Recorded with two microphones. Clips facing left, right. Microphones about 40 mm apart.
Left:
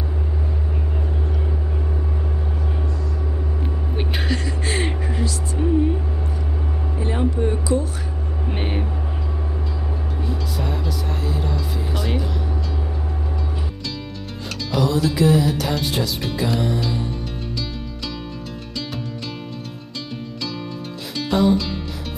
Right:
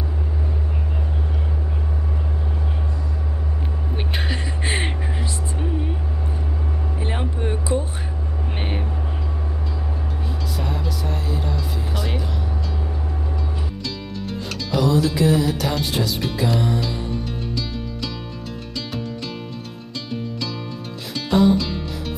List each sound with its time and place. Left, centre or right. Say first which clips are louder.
4.3 s music: left 1 dB; right
5.6 s music: left 9 dB; centre
7.0 s music: left 6 dB; right
8.5 s vehicle: left 3 dB; centre
11.9 s vehicle: left 3 dB; centre
14.7 s music: right 1 dB; centre
21.1 s music: right 1 dB; centre